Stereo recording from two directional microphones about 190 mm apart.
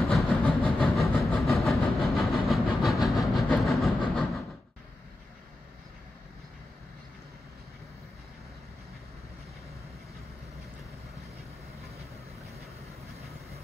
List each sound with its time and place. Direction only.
0.1 s train: centre (ahead or behind)